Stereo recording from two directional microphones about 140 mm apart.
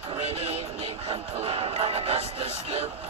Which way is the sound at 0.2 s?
45° right (ahead or behind).